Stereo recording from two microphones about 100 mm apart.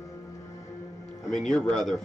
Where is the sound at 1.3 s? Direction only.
5° left (ahead or behind).